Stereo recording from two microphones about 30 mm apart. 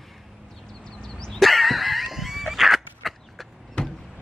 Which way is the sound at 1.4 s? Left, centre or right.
Centre.